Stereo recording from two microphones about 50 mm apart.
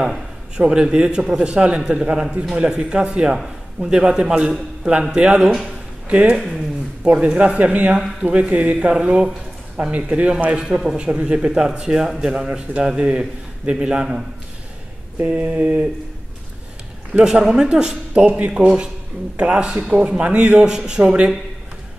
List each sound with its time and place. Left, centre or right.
0.6 s a man's voice: centre
6.0 s a man's voice: right
8.7 s a man's voice: centre
9.8 s a man's voice: right
15.2 s a sound: right
17.2 s a man's voice: centre